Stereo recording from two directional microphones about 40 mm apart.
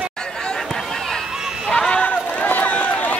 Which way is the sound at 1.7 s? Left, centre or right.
Left.